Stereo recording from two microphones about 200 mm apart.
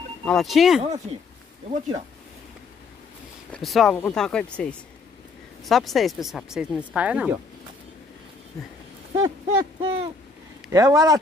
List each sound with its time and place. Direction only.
0.2 s speech: centre (ahead or behind)
1.7 s speech: 35° right (ahead or behind)
3.5 s speech: centre (ahead or behind)
9.8 s a sound: 25° right (ahead or behind)
10.7 s speech: 15° right (ahead or behind)